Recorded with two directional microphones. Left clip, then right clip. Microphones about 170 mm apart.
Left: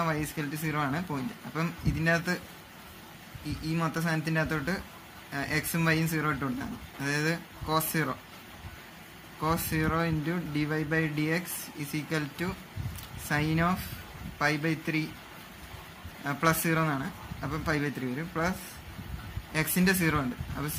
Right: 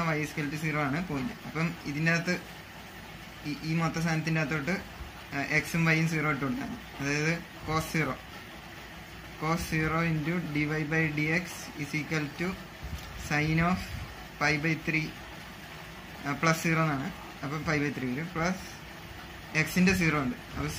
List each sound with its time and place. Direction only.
0.0 s speech: 75° left (ahead or behind)
3.6 s speech: 75° left (ahead or behind)
9.4 s speech: 70° left (ahead or behind)
16.3 s speech: 75° left (ahead or behind)
19.5 s speech: 70° left (ahead or behind)